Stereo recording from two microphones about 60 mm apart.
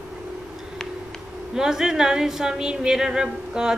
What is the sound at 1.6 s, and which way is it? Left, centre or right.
Speech, centre.